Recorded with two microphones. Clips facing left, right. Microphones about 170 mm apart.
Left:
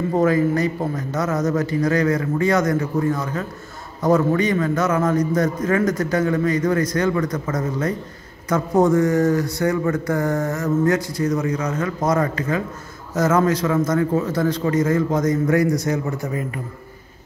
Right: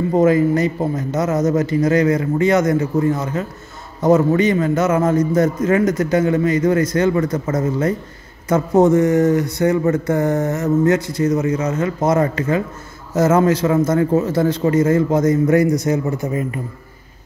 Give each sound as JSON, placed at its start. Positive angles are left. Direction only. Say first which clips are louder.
{"t": 0.2, "sound": "speech", "louder": "right 4 dB", "side_deg": -20}